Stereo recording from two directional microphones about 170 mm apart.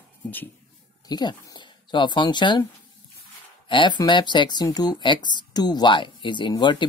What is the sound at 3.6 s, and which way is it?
Speech, 25° left (ahead or behind).